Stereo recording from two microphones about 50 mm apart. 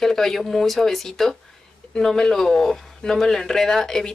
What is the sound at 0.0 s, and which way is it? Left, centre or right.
A woman's voice, centre.